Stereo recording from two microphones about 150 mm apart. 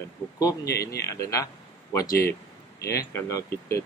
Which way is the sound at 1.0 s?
20° left (ahead or behind).